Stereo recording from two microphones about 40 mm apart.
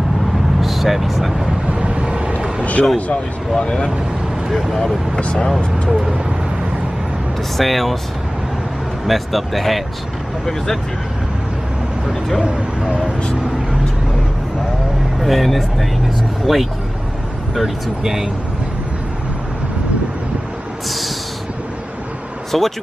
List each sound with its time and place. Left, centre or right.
0.6 s speech: centre
1.7 s vehicle: right
2.6 s a sound: left
3.5 s speech: left
4.6 s speech: centre
7.5 s speech: centre
9.0 s speech: centre
12.4 s speech: centre
15.2 s speech: centre
22.5 s speech: centre